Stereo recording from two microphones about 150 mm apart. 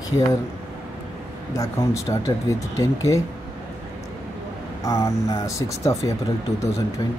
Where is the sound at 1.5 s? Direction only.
20° left (ahead or behind).